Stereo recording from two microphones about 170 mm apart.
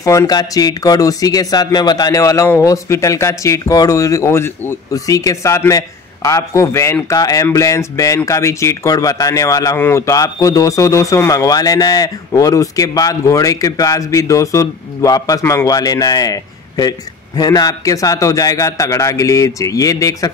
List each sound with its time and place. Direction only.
0.0 s speech: 20° left (ahead or behind)